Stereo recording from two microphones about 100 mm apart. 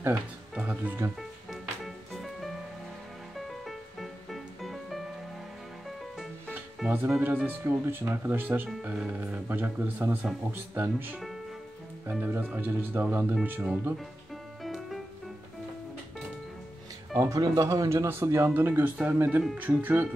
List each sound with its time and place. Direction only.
0.1 s speech: 10° right (ahead or behind)
2.1 s music: centre (ahead or behind)
7.0 s speech: 15° right (ahead or behind)
14.6 s music: centre (ahead or behind)
17.2 s speech: 35° right (ahead or behind); by 20.1 s 15° right (ahead or behind)